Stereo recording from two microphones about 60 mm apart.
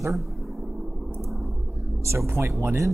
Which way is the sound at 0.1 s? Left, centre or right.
Centre.